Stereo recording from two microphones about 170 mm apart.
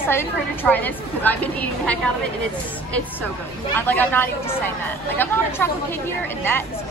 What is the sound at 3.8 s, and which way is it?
A woman's voice, 10° left (ahead or behind).